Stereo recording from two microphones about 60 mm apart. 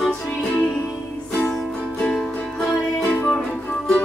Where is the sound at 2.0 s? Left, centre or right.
Centre.